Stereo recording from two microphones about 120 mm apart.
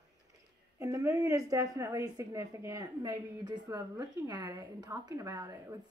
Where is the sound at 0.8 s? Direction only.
25° right (ahead or behind).